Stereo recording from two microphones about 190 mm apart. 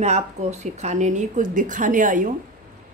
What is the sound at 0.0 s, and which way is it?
Speech, 35° right (ahead or behind).